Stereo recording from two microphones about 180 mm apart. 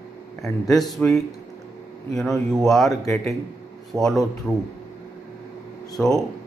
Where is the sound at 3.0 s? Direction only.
20° left (ahead or behind).